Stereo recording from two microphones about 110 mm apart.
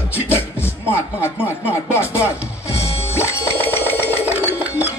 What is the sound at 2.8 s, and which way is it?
Music, 65° left (ahead or behind).